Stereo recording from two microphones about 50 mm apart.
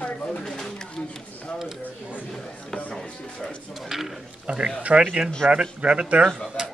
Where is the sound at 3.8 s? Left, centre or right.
Centre.